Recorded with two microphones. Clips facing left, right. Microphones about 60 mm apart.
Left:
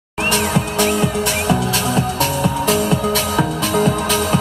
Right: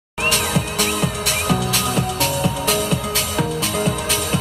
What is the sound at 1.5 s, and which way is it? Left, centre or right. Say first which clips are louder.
Music: left 2 dB; left.